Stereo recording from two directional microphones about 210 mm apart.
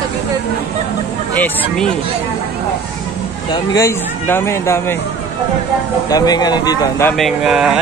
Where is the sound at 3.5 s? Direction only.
15° left (ahead or behind).